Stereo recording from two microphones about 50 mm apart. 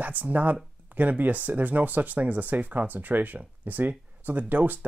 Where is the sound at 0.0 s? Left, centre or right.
Right.